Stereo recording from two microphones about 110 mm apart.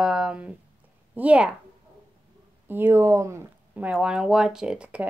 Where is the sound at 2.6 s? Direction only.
20° right (ahead or behind).